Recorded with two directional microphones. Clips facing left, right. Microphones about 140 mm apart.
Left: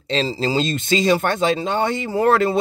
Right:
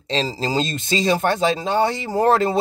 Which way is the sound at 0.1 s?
40° right (ahead or behind).